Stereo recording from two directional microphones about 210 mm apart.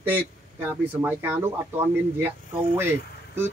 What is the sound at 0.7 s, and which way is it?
Speech, 10° right (ahead or behind).